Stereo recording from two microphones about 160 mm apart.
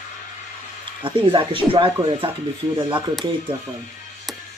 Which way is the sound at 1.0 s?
30° right (ahead or behind).